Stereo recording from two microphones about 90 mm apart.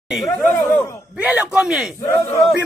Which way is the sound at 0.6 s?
35° left (ahead or behind).